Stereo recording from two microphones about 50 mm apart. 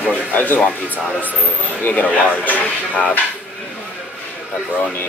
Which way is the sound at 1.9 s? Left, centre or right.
Left.